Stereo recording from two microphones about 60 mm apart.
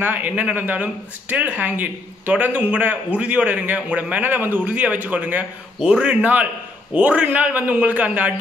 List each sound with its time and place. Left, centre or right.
0.0 s a man's voice: right
5.8 s a man's voice: centre